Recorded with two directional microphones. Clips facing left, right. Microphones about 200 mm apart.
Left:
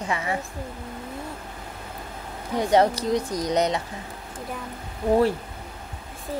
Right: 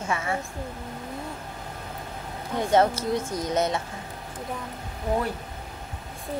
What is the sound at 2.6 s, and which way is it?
Speech, 15° left (ahead or behind).